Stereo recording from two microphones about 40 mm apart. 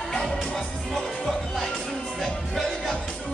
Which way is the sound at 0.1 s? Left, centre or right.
Centre.